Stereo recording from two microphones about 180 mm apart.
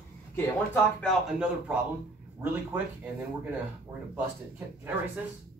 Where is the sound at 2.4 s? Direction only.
15° right (ahead or behind).